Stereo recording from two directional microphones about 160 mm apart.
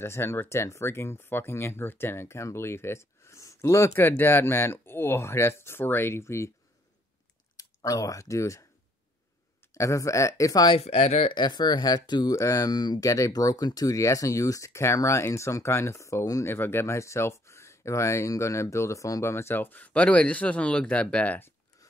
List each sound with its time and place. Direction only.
0.0 s speech: 15° left (ahead or behind)
7.5 s speech: 20° left (ahead or behind)
9.8 s speech: 20° left (ahead or behind)
10.8 s speech: 40° left (ahead or behind); by 21.8 s 15° left (ahead or behind)